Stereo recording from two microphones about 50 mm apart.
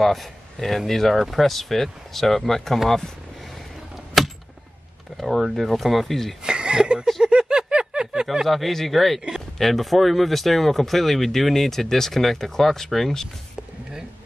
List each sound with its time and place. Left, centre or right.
0.0 s speech: centre
3.9 s a sound: centre
5.1 s speech: centre
6.4 s chuckle: centre
7.2 s a sound: centre
8.5 s speech: centre